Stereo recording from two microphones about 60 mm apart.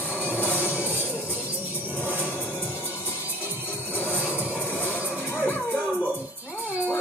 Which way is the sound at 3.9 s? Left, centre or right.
Right.